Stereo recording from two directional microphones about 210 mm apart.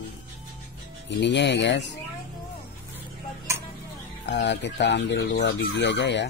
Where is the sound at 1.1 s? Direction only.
55° left (ahead or behind).